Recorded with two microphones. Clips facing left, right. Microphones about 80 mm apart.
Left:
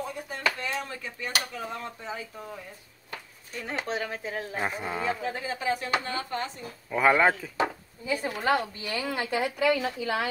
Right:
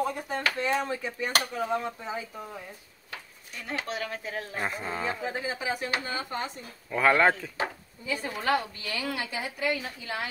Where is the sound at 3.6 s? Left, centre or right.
Left; by 5.0 s centre.